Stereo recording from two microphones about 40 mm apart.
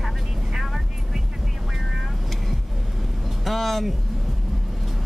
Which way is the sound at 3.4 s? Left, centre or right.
Centre.